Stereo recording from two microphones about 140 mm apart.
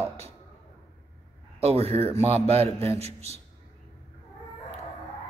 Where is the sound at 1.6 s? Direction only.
45° right (ahead or behind).